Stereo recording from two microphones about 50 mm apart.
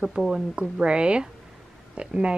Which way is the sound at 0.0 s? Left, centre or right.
Centre.